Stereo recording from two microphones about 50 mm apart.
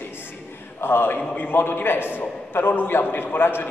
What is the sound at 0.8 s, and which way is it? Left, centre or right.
A man's voice, left.